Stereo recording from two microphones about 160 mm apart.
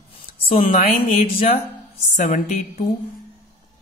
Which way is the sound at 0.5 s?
40° left (ahead or behind).